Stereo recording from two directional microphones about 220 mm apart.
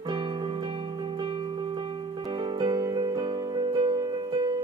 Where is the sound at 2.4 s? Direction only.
20° right (ahead or behind).